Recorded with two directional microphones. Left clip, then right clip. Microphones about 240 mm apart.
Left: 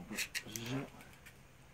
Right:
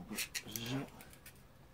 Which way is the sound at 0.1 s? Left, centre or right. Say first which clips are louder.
Left 2 dB; centre.